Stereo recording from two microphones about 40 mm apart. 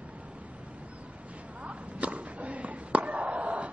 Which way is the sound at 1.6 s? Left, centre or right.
Right.